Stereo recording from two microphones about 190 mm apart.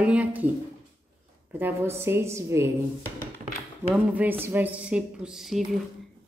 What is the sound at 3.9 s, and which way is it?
A woman's voice, 10° right (ahead or behind).